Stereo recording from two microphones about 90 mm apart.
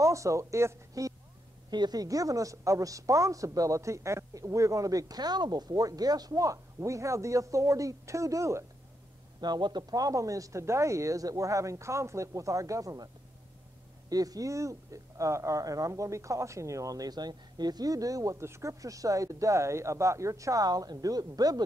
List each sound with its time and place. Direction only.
0.0 s speech: 35° right (ahead or behind)
1.7 s speech: 50° right (ahead or behind); by 8.6 s 35° right (ahead or behind)
9.4 s speech: 50° right (ahead or behind)